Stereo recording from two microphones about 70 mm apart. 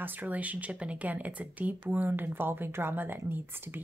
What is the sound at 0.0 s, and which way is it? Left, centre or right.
Speech, right.